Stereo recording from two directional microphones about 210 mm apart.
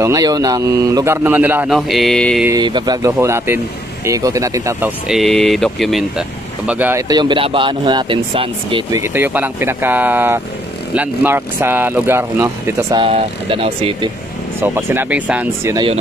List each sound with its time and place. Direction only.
0.0 s speech: 15° right (ahead or behind); by 2.4 s centre (ahead or behind)
2.4 s speech: 20° right (ahead or behind)
9.0 s speech: 10° right (ahead or behind)
13.0 s speech: 25° right (ahead or behind)
14.6 s speech: 10° right (ahead or behind)
15.7 s speech: 25° right (ahead or behind)